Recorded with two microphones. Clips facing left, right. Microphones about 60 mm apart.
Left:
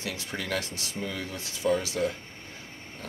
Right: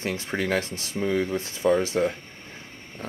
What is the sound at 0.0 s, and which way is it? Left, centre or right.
Speech, right.